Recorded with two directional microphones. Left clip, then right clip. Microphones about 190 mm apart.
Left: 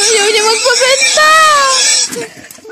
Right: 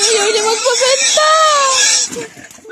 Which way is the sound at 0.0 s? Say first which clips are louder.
Left 3 dB; centre (ahead or behind).